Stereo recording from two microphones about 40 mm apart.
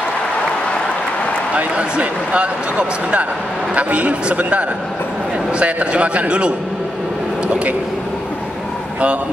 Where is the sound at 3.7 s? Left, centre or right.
Right.